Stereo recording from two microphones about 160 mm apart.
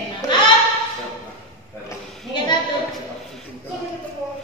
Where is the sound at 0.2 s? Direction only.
25° left (ahead or behind).